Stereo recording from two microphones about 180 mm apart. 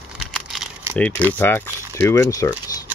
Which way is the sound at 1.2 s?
10° left (ahead or behind).